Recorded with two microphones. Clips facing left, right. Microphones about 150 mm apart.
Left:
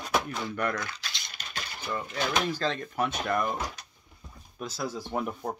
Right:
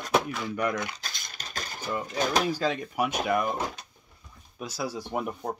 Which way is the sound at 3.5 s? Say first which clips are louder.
Right 3 dB; 25° right (ahead or behind).